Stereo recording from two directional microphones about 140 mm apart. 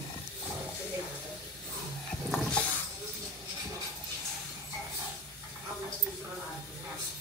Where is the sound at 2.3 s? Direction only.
5° left (ahead or behind).